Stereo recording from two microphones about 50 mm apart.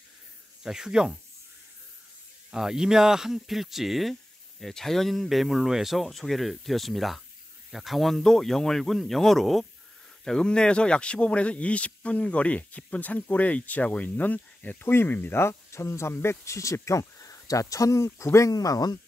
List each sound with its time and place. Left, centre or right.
0.7 s speech: centre
2.5 s speech: centre
10.2 s speech: centre; by 14.9 s left
14.9 s speech: left